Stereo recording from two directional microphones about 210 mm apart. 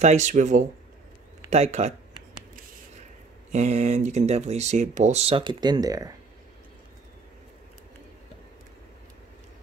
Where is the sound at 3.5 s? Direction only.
35° right (ahead or behind); by 6.1 s 15° right (ahead or behind).